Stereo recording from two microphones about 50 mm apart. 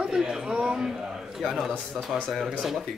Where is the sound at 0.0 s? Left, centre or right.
Centre.